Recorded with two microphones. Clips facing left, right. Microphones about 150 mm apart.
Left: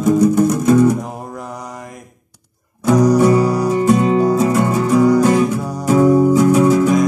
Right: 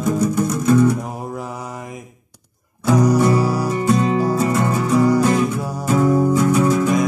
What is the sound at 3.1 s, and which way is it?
Music, 15° left (ahead or behind).